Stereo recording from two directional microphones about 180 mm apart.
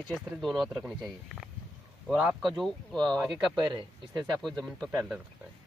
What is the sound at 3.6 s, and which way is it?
Speech, 25° right (ahead or behind).